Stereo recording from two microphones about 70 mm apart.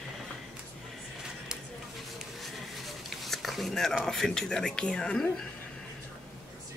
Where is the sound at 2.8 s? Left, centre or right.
Centre.